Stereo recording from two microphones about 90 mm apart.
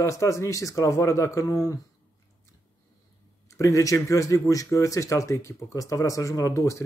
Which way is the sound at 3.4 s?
35° left (ahead or behind).